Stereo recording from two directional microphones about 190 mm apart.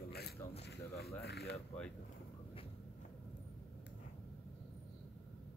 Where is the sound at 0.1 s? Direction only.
55° left (ahead or behind).